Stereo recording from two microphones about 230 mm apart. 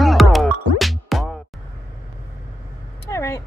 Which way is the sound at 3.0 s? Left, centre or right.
Centre.